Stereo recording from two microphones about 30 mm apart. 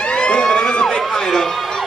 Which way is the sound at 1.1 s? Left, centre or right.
Centre.